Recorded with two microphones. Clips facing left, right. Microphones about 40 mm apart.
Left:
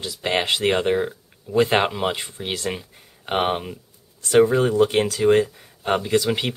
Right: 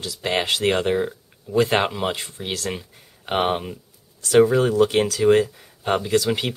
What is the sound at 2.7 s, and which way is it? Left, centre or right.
Speech, centre.